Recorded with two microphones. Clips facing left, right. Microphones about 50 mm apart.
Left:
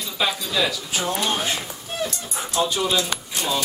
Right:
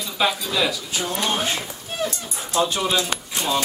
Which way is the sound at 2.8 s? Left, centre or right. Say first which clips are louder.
Even; centre.